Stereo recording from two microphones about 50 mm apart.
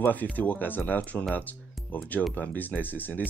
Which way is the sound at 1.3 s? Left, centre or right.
Left.